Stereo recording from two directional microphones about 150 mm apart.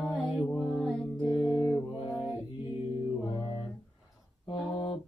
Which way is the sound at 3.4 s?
35° left (ahead or behind).